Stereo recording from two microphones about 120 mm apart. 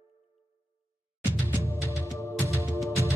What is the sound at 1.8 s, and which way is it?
Music, 20° left (ahead or behind).